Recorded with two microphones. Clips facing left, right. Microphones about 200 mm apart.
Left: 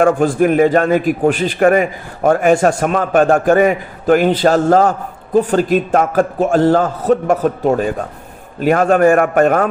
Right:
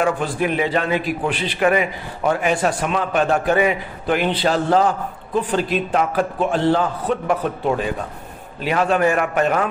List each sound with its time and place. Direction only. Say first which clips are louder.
0.0 s a man's voice: left 8 dB; 45° left (ahead or behind)